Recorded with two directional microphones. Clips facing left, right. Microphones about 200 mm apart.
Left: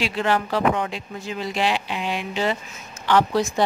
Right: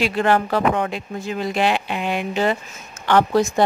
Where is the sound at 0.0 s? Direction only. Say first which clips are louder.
Right 4 dB; 50° right (ahead or behind).